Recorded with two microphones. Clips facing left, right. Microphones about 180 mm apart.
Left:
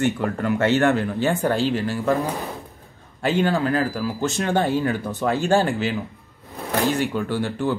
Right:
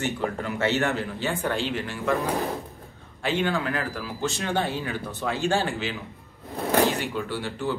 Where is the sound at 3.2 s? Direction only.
40° left (ahead or behind).